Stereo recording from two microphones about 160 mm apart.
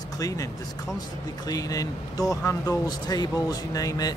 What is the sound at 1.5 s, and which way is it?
Speech, 20° left (ahead or behind).